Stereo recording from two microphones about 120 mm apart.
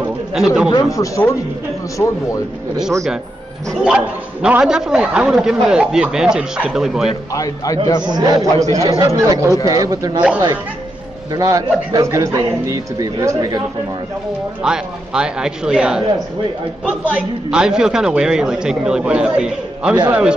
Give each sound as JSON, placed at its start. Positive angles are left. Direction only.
{"t": 0.3, "sound": "a man's voice", "side_deg": -5}
{"t": 0.8, "sound": "a man's voice", "side_deg": 25}
{"t": 3.8, "sound": "a man's voice", "side_deg": -10}
{"t": 7.3, "sound": "a man's voice", "side_deg": 30}
{"t": 8.1, "sound": "speech", "side_deg": -30}
{"t": 11.3, "sound": "a man's voice", "side_deg": -30}
{"t": 14.6, "sound": "a man's voice", "side_deg": -5}